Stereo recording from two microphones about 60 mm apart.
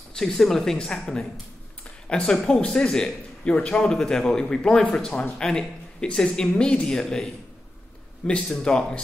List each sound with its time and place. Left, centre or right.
0.1 s a man's voice: centre
8.3 s a man's voice: centre